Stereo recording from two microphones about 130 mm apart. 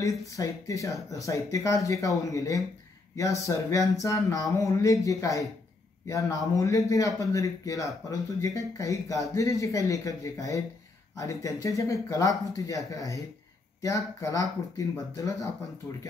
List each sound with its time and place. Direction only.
0.3 s a man's voice: 25° left (ahead or behind)